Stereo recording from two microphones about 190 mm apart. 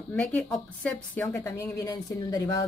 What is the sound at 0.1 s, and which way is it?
Speech, centre (ahead or behind).